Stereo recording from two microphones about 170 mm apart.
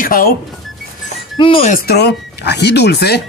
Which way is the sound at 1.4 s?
35° left (ahead or behind).